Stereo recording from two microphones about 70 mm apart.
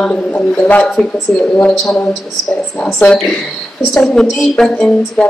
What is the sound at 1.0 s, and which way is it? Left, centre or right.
Speech, centre.